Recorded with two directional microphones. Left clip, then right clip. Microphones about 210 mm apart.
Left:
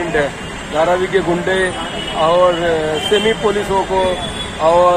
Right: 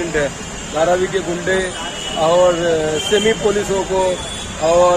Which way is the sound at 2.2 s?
Centre (ahead or behind).